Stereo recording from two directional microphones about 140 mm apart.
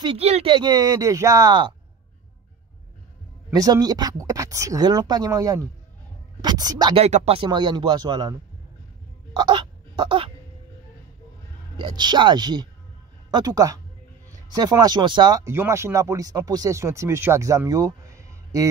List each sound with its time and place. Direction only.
0.0 s speech: 40° right (ahead or behind)
3.5 s speech: 25° right (ahead or behind)
7.0 s speech: 50° right (ahead or behind)
7.4 s speech: 35° right (ahead or behind)
9.4 s a sound: 35° right (ahead or behind)
11.7 s speech: 35° right (ahead or behind)
15.4 s speech: 20° right (ahead or behind)